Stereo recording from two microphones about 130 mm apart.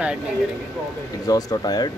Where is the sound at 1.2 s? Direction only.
30° left (ahead or behind).